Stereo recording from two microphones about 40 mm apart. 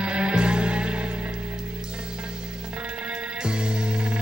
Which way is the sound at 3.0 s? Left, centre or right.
Right.